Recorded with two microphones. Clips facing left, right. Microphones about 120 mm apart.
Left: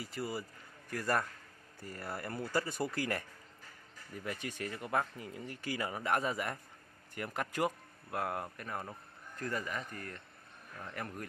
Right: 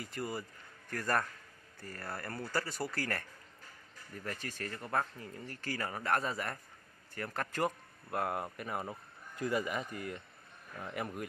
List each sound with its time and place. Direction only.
0.0 s speech: 5° left (ahead or behind)
8.1 s speech: centre (ahead or behind)